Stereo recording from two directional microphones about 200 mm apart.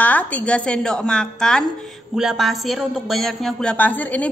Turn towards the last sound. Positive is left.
turn(degrees=10)  # may be behind; listen again after turning